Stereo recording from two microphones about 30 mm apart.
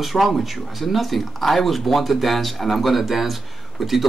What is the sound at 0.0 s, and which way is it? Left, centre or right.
Speech, centre.